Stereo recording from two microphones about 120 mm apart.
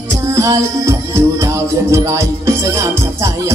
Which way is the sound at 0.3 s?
25° right (ahead or behind).